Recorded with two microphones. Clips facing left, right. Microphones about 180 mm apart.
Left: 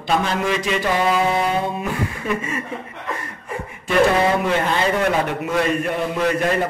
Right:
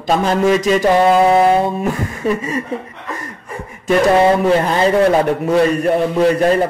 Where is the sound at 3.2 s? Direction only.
40° right (ahead or behind).